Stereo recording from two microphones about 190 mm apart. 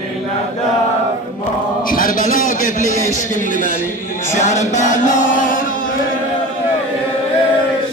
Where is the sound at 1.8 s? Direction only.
45° left (ahead or behind).